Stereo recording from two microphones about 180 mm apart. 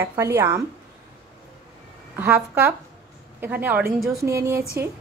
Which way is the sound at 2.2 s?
10° right (ahead or behind).